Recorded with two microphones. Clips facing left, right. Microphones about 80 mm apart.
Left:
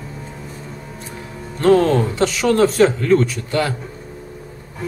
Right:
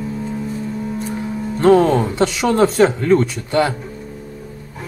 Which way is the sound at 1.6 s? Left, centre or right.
Centre.